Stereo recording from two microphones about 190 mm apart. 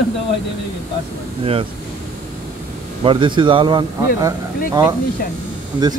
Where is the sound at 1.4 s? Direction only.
30° right (ahead or behind).